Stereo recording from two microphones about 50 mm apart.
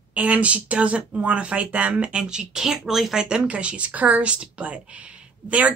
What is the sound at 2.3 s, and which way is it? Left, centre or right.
A woman's voice, centre.